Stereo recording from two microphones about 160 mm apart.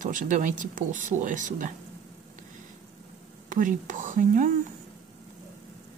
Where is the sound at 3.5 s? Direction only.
55° right (ahead or behind).